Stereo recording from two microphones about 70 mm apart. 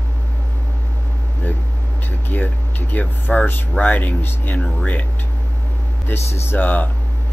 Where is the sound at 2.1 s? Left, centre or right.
Left.